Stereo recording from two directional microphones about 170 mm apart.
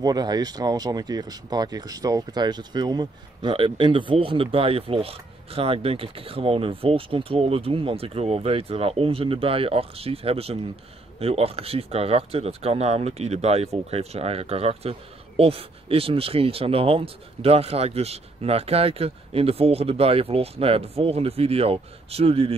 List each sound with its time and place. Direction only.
0.0 s speech: 25° right (ahead or behind)